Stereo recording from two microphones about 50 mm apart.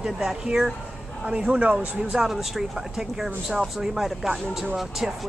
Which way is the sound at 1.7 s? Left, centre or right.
Centre.